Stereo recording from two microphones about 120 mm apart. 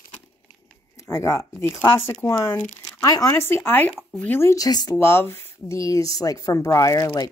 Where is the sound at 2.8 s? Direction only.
30° left (ahead or behind).